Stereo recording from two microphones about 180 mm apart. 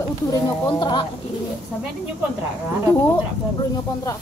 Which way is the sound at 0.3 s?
25° left (ahead or behind).